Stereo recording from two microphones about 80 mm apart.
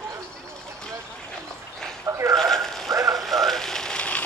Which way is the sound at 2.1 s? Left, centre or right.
Right.